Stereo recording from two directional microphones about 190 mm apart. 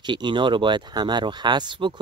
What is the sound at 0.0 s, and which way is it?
Speech, 25° right (ahead or behind).